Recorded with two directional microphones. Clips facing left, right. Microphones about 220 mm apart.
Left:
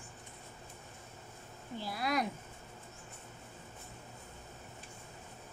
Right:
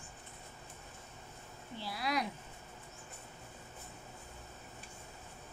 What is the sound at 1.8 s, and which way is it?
Speech, 50° left (ahead or behind).